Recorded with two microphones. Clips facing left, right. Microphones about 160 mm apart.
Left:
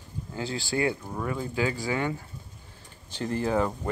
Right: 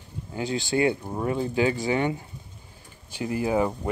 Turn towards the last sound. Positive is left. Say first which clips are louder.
# right 2 dB
turn(degrees=-10)  # may be behind; listen again after turning